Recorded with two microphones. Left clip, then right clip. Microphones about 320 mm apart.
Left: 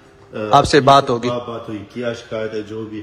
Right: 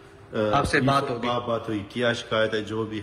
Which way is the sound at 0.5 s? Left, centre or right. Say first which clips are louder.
Left 13 dB; centre.